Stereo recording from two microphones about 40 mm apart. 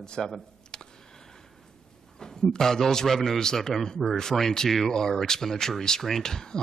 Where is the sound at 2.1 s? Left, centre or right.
Centre.